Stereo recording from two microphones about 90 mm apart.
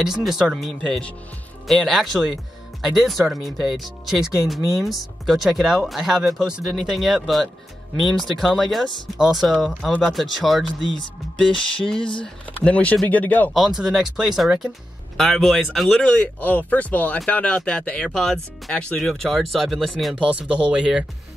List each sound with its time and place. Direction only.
0.0 s speech: 5° right (ahead or behind); by 13.5 s 20° left (ahead or behind)
13.5 s speech: 5° right (ahead or behind)
16.0 s speech: 15° left (ahead or behind)
20.2 s speech: 15° right (ahead or behind)